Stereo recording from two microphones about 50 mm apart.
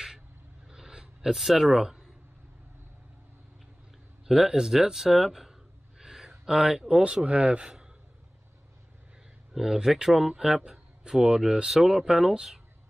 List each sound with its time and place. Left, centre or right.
0.7 s a sound: centre
1.3 s speech: centre
4.3 s speech: centre
9.5 s speech: centre